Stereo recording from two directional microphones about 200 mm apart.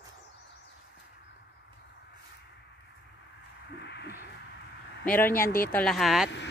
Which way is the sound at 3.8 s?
55° left (ahead or behind).